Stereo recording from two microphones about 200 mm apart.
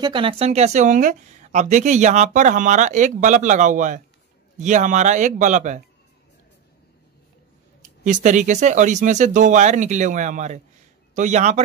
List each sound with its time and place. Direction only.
0.0 s speech: 25° right (ahead or behind)
8.0 s speech: 40° right (ahead or behind)